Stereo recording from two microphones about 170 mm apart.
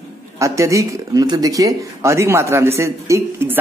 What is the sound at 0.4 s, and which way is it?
Speech, 20° right (ahead or behind).